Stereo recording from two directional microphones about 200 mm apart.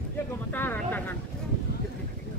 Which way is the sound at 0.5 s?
10° left (ahead or behind).